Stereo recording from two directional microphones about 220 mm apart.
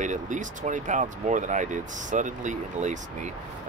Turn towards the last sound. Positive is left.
turn(degrees=-35)  # may be behind; listen again after turning